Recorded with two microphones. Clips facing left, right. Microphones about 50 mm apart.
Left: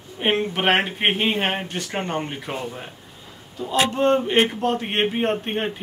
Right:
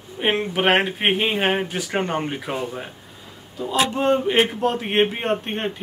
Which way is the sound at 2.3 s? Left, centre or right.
Centre.